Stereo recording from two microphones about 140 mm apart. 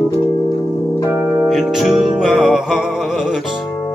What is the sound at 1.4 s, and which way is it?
Music, centre (ahead or behind).